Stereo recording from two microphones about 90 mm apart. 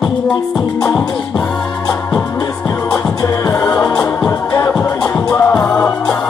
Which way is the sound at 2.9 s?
40° left (ahead or behind).